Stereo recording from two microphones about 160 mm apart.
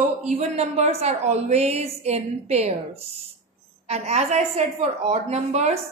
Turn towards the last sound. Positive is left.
turn(degrees=-45)  # may be behind; listen again after turning